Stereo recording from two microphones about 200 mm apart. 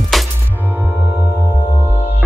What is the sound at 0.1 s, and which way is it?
Music, centre (ahead or behind).